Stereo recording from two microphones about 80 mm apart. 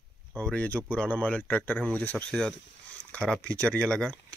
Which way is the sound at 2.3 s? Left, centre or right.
Centre.